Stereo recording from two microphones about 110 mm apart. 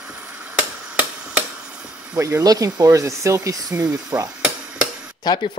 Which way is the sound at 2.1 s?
30° right (ahead or behind).